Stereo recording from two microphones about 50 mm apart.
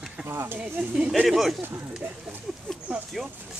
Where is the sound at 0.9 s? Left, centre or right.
Right.